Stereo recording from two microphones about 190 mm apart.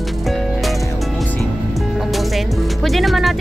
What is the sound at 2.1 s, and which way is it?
Music, centre (ahead or behind).